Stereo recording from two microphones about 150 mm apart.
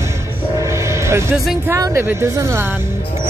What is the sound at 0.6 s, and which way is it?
Music, 20° right (ahead or behind).